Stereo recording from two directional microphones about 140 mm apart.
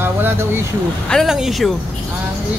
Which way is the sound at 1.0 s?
Centre (ahead or behind).